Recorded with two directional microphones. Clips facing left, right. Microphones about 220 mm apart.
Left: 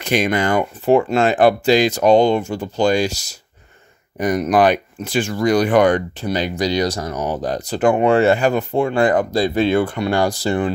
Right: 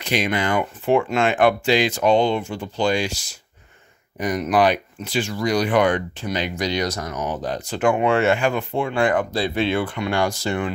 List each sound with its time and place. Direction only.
0.0 s speech: 50° left (ahead or behind)